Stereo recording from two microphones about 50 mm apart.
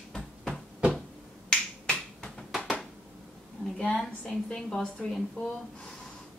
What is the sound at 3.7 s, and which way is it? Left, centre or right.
A woman's voice, centre.